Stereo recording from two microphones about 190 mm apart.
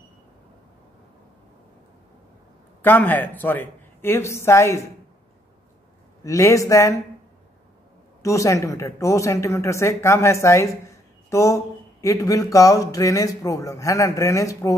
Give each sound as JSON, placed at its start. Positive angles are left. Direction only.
{"t": 2.8, "sound": "speech", "side_deg": 10}
{"t": 6.2, "sound": "speech", "side_deg": 15}
{"t": 8.2, "sound": "speech", "side_deg": 15}